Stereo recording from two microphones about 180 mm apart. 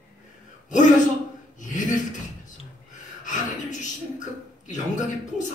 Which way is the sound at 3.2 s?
45° left (ahead or behind).